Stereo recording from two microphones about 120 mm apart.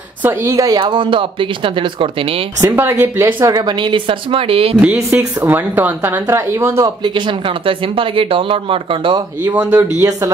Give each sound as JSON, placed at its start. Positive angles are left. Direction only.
{"t": 0.2, "sound": "speech", "side_deg": -20}
{"t": 2.6, "sound": "speech", "side_deg": -20}
{"t": 3.5, "sound": "speech", "side_deg": -40}
{"t": 5.1, "sound": "speech", "side_deg": -15}
{"t": 7.0, "sound": "speech", "side_deg": -40}
{"t": 9.4, "sound": "speech", "side_deg": -15}
{"t": 9.9, "sound": "speech", "side_deg": -25}